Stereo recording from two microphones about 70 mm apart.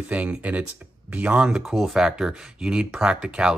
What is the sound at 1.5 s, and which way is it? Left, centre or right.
Speech, centre.